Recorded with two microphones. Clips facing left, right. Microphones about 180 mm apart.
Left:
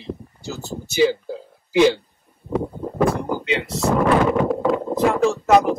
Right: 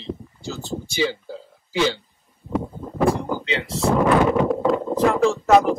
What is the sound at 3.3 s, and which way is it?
Speech, 15° left (ahead or behind).